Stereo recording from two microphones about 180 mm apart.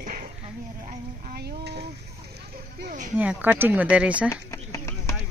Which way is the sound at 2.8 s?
45° right (ahead or behind).